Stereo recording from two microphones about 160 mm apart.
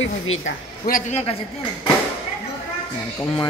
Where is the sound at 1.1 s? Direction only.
35° left (ahead or behind).